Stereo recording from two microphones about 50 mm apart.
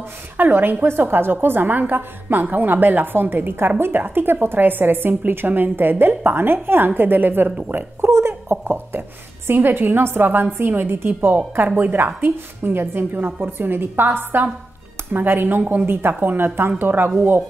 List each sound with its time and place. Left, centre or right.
0.4 s a woman's voice: right
7.7 s a woman's voice: right